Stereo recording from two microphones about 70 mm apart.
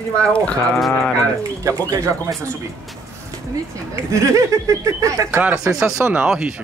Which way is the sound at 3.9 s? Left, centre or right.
Right.